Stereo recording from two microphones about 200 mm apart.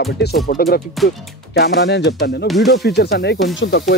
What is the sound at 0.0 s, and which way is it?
Speech, 55° left (ahead or behind).